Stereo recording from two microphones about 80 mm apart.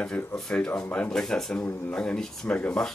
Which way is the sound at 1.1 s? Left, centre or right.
Centre.